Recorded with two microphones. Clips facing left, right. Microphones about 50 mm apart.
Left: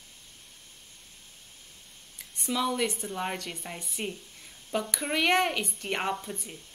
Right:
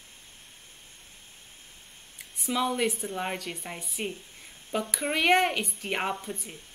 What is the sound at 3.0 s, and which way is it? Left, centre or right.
Speech, centre.